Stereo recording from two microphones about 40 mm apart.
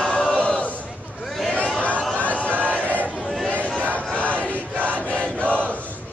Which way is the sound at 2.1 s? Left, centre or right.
Left.